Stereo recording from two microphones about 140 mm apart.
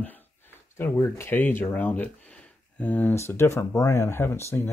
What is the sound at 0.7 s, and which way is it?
Speech, 15° left (ahead or behind).